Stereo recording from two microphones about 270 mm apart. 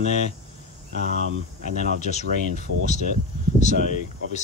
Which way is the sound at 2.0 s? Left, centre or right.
Left.